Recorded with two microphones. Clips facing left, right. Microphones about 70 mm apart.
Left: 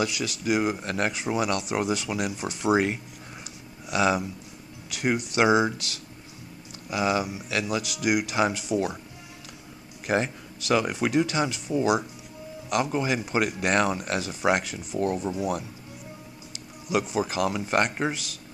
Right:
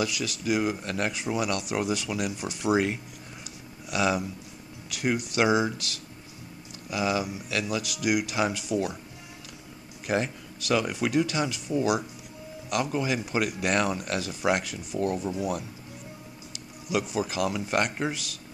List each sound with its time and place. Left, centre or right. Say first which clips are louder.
0.0 s speech: left 2 dB; left
0.8 s speech: left 2 dB; left
1.1 s speech: left 2 dB; left
6.9 s speech: left 2 dB; left
10.0 s speech: left 2 dB; left
16.9 s speech: left 2 dB; left